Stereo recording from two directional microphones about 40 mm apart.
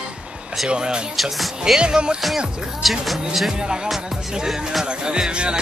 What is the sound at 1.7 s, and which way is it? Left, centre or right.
Speech, right.